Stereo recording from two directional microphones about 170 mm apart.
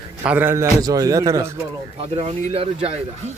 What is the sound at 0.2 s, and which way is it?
A man's voice, 10° right (ahead or behind).